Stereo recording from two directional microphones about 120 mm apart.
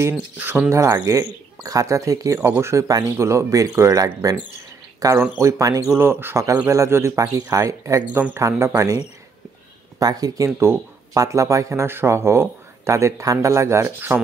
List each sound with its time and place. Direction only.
0.4 s speech: 15° right (ahead or behind)
5.9 s speech: 15° right (ahead or behind)
8.1 s speech: 15° right (ahead or behind)